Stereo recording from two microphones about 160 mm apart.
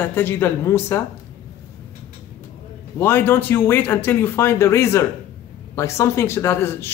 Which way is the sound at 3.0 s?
15° left (ahead or behind).